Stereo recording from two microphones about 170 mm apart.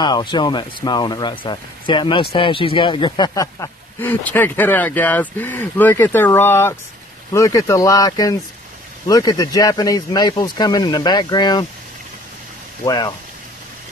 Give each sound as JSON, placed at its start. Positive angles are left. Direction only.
{"t": 0.0, "sound": "speech", "side_deg": 25}
{"t": 12.8, "sound": "speech", "side_deg": 25}